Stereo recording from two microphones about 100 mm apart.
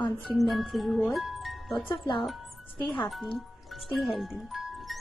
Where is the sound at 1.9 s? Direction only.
55° left (ahead or behind).